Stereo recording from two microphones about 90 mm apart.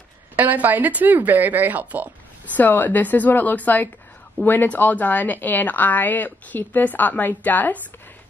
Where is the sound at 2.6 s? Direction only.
20° left (ahead or behind).